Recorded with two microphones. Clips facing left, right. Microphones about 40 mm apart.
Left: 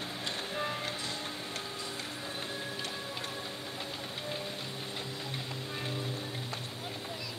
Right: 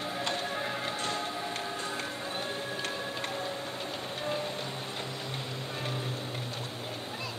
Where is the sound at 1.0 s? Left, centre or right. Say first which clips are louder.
Right 5 dB; right.